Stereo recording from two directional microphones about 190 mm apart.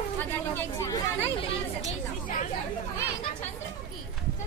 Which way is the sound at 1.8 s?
40° left (ahead or behind).